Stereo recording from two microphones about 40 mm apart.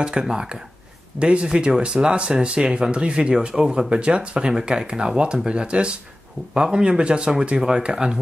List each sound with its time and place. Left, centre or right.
0.0 s speech: centre